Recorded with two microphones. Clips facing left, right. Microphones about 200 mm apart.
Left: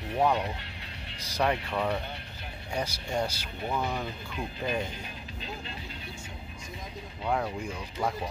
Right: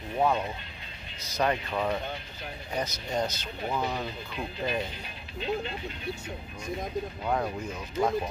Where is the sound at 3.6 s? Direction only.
5° right (ahead or behind).